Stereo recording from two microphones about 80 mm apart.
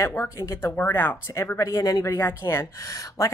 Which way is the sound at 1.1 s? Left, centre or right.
Left.